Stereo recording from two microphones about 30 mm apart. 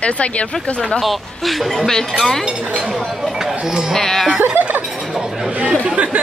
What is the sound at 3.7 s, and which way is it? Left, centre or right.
Speech, right.